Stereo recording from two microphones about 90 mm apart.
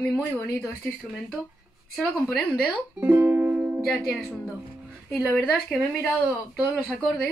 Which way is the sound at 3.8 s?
Centre (ahead or behind).